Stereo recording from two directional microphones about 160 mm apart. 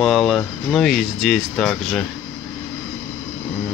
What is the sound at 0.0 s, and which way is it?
Speech, centre (ahead or behind).